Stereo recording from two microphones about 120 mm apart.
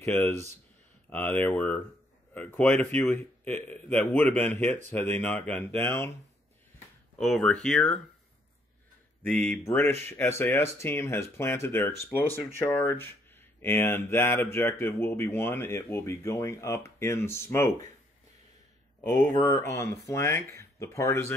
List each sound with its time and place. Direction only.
0.0 s speech: 20° left (ahead or behind)
1.4 s speech: 15° left (ahead or behind)
7.2 s speech: centre (ahead or behind)
9.2 s speech: 15° left (ahead or behind)
19.3 s speech: 20° left (ahead or behind)